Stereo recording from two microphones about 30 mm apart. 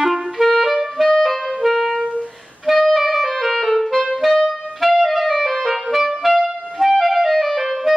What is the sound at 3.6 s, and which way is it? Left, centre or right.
Clarinet, centre.